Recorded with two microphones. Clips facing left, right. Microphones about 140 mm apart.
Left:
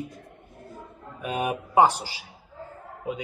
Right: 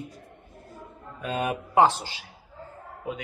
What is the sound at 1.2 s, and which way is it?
A man's voice, 15° left (ahead or behind).